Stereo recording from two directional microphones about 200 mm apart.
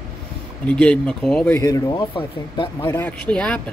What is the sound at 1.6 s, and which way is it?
Speech, 15° left (ahead or behind).